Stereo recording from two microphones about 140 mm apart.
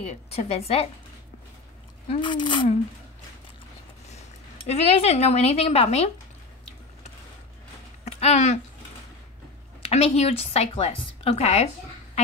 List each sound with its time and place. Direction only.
0.4 s a woman's voice: 50° left (ahead or behind)
2.0 s speech: 35° left (ahead or behind)
4.6 s a woman's voice: 50° left (ahead or behind)
8.0 s a sound: 50° left (ahead or behind)
9.8 s a woman's voice: 45° left (ahead or behind)